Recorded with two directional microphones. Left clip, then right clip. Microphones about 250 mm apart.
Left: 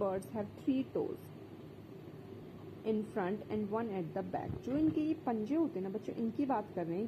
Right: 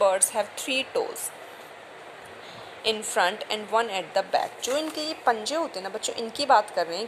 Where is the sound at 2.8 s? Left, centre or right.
Right.